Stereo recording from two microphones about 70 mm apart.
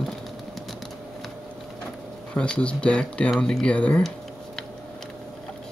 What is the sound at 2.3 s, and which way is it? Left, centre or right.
Speech, centre.